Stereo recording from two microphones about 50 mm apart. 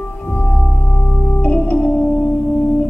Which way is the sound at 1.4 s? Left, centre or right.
Left.